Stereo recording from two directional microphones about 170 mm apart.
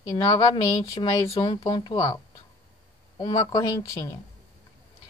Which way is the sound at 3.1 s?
25° left (ahead or behind).